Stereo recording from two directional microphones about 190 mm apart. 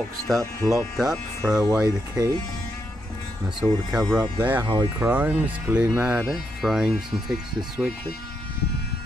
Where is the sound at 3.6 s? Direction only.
10° right (ahead or behind).